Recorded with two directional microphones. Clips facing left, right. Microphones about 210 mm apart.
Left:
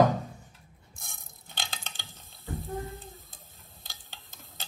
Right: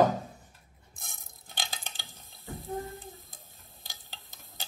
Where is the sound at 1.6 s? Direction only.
15° right (ahead or behind).